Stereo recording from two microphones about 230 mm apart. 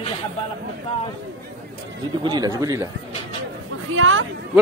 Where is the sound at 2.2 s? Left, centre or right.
Centre.